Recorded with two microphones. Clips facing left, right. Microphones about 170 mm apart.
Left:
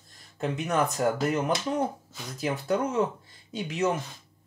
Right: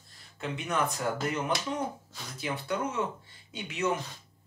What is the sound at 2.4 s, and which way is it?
Speech, 40° left (ahead or behind).